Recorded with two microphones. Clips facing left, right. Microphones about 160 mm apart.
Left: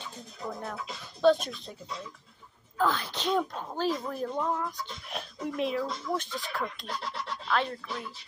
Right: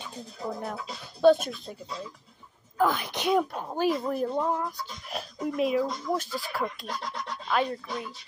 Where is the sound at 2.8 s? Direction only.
15° right (ahead or behind).